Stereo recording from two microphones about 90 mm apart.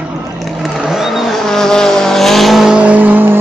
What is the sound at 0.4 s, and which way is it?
Vehicle, centre (ahead or behind).